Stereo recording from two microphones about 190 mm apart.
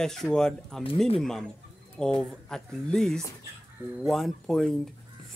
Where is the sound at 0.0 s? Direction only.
5° left (ahead or behind).